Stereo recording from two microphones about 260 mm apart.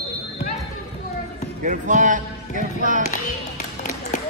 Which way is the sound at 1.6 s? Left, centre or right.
Right.